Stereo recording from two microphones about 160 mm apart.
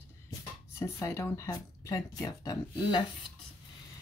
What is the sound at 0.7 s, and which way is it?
Speech, 20° left (ahead or behind).